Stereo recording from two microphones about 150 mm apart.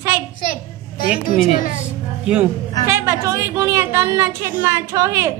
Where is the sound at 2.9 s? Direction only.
20° right (ahead or behind).